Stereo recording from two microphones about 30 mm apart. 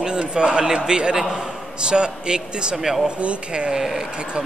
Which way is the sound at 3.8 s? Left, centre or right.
Centre.